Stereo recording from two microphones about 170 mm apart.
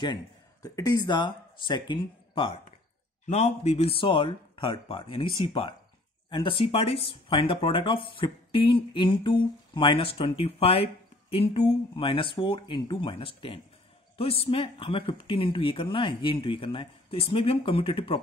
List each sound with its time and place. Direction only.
0.0 s speech: 25° left (ahead or behind)
3.3 s speech: 40° left (ahead or behind)